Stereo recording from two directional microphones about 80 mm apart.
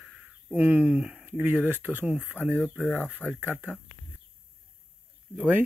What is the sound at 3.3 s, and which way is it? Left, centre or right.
Speech, right.